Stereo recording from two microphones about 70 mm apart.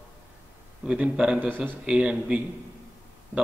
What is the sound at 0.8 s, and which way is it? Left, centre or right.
A man's voice, centre.